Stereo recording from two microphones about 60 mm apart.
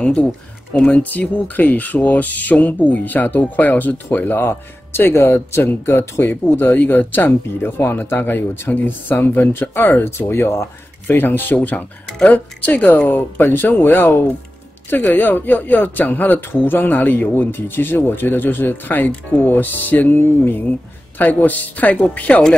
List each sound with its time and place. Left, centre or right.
0.0 s speech: centre; by 11.1 s left
11.1 s speech: left